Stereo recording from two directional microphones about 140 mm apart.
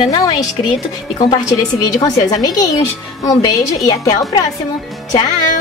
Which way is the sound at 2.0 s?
30° left (ahead or behind).